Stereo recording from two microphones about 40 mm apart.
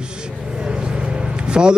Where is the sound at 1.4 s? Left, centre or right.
Right.